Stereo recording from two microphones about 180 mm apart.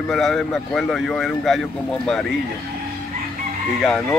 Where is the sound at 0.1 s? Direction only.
Centre (ahead or behind).